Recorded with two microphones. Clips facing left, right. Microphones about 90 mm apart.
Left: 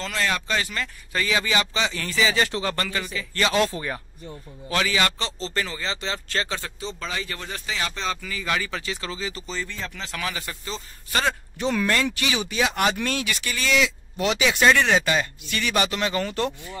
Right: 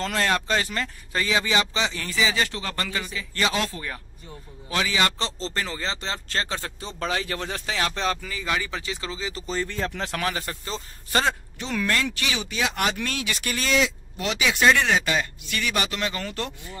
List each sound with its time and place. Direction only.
0.0 s speech: 45° right (ahead or behind); by 3.5 s 15° right (ahead or behind)
3.7 s speech: 25° left (ahead or behind)
4.6 s speech: 15° right (ahead or behind)
5.2 s speech: 30° right (ahead or behind)
7.0 s speech: 65° right (ahead or behind)
8.2 s speech: 30° right (ahead or behind)
8.5 s speech: 20° right (ahead or behind)
9.5 s a man's voice: 55° right (ahead or behind); by 11.2 s 35° right (ahead or behind)
11.6 s speech: 10° left (ahead or behind)
13.4 s speech: 45° right (ahead or behind)
14.1 s speech: centre (ahead or behind)